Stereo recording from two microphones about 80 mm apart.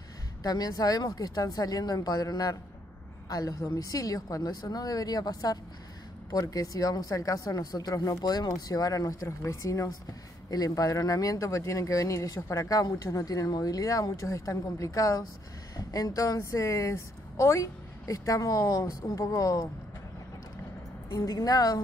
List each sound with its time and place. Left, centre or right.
0.4 s a woman's voice: left
21.1 s a woman's voice: left